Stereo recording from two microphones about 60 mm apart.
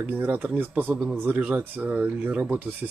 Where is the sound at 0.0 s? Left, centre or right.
Right.